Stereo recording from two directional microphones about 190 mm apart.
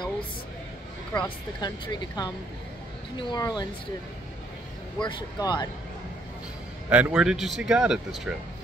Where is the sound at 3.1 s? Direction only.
25° left (ahead or behind).